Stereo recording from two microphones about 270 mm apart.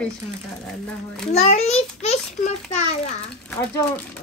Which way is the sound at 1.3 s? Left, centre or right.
Left.